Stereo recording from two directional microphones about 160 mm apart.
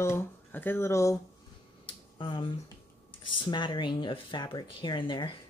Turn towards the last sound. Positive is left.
turn(degrees=30)  # may be behind; listen again after turning